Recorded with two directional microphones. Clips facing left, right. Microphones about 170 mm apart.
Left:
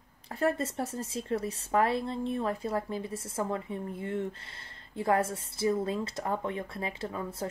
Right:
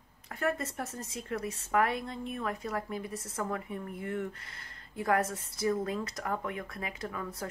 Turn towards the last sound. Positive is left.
turn(degrees=25)  # may be behind; listen again after turning